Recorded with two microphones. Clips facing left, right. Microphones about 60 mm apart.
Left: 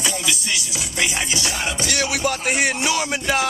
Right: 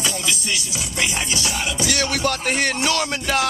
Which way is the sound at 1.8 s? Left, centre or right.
Centre.